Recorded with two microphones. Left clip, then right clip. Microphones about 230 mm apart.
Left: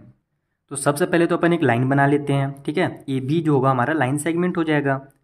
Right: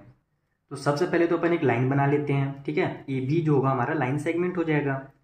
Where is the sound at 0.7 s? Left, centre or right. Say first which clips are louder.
Left 5 dB; left.